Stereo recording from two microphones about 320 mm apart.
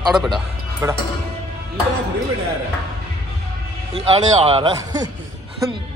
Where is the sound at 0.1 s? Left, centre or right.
Centre.